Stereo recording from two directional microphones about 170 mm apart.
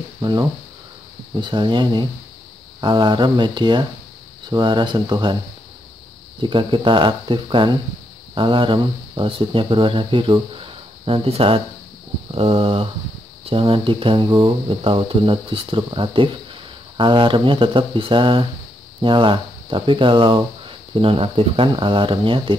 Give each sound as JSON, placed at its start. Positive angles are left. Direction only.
{"t": 0.2, "sound": "speech", "side_deg": -25}
{"t": 6.4, "sound": "speech", "side_deg": -30}